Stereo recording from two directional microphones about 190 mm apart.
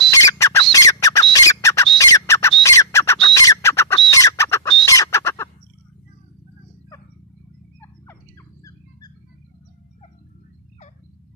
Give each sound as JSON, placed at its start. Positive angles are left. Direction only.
{"t": 0.1, "sound": "squawk", "side_deg": 15}
{"t": 3.3, "sound": "bird", "side_deg": 15}
{"t": 4.1, "sound": "chicken", "side_deg": 15}
{"t": 4.8, "sound": "fowl", "side_deg": 15}